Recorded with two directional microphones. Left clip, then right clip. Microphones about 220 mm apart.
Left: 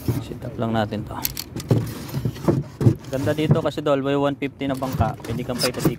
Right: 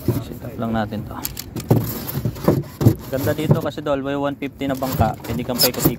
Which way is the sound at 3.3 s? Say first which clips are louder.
Even; 20° left (ahead or behind).